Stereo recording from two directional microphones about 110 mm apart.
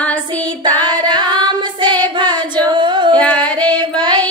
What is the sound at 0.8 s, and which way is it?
Singing, 45° right (ahead or behind).